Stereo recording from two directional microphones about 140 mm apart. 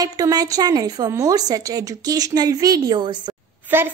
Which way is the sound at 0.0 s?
25° right (ahead or behind).